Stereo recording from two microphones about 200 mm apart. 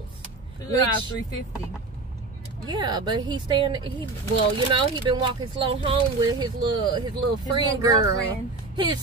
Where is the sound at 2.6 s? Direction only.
20° right (ahead or behind).